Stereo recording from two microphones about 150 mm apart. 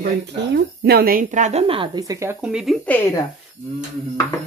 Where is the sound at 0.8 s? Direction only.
85° right.